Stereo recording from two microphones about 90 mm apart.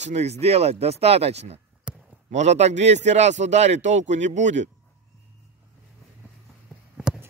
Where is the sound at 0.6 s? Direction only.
90° right.